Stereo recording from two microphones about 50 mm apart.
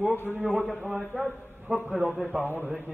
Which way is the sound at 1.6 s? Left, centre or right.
Right.